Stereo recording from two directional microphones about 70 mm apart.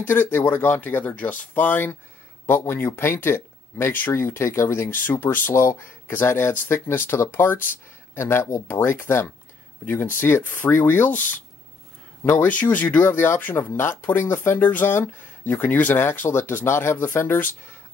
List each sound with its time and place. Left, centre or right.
0.0 s speech: left
13.1 s speech: left